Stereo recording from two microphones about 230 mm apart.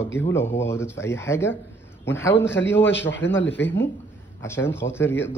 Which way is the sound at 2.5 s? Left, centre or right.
Left.